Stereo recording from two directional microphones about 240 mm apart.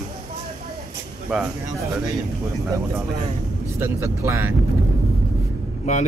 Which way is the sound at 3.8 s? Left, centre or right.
Centre.